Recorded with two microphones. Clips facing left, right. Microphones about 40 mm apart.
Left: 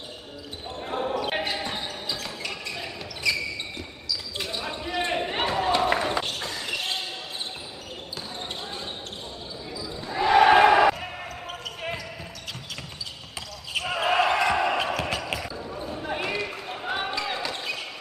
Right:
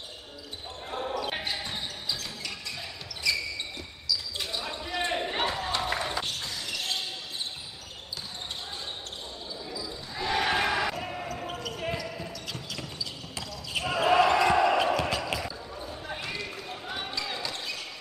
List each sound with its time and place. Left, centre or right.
0.8 s basketball bounce: left
4.4 s basketball bounce: left
10.0 s basketball bounce: left
10.9 s basketball bounce: centre
13.7 s basketball bounce: centre
15.9 s basketball bounce: left